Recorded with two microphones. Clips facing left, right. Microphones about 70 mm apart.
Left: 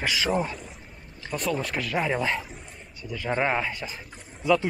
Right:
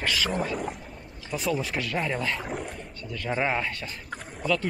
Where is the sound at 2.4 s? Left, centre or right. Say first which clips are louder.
Right 11 dB; right.